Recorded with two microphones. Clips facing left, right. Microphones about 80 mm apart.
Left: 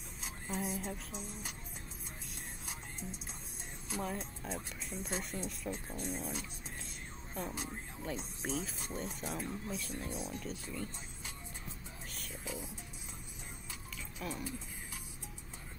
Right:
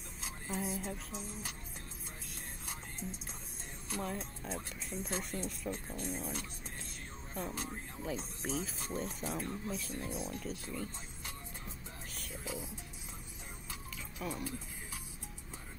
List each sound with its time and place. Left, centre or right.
0.2 s speech: centre
3.9 s speech: centre
12.2 s music: centre
14.2 s speech: centre